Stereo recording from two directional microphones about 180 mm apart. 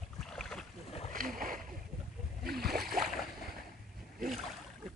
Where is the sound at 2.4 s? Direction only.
55° right (ahead or behind).